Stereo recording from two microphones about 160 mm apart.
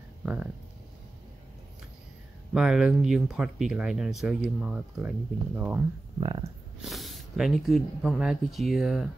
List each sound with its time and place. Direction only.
0.2 s speech: 10° right (ahead or behind)
2.5 s speech: 5° right (ahead or behind)
6.1 s a sound: 30° right (ahead or behind)
6.8 s speech: centre (ahead or behind)